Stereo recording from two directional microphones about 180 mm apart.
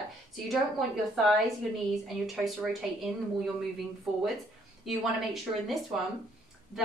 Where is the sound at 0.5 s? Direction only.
Centre (ahead or behind).